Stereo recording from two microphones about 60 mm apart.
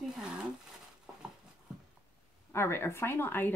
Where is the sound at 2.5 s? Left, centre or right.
Left.